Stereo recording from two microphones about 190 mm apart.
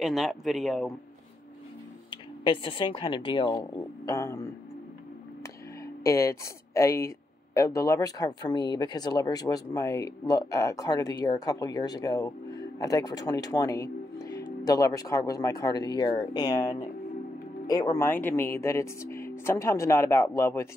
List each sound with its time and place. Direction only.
0.0 s a man's voice: centre (ahead or behind)
2.0 s speech: 25° left (ahead or behind)
6.0 s speech: 15° left (ahead or behind)